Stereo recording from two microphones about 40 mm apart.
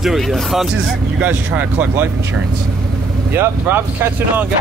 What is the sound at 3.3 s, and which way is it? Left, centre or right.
Speech, right.